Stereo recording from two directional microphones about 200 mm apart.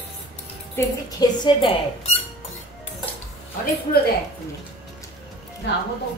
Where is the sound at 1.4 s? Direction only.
25° left (ahead or behind).